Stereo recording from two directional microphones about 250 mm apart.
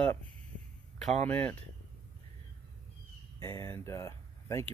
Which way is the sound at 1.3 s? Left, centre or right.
Centre.